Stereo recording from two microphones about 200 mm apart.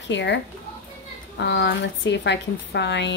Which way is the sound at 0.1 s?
60° left (ahead or behind).